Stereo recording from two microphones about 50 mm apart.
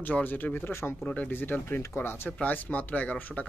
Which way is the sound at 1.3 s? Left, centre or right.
Left.